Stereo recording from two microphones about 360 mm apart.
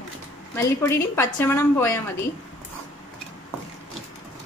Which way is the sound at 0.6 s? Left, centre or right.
Centre.